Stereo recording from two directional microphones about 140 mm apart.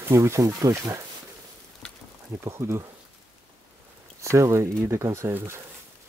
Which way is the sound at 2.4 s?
20° right (ahead or behind).